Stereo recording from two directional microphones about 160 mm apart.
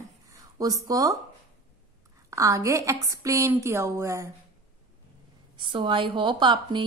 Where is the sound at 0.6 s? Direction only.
20° right (ahead or behind).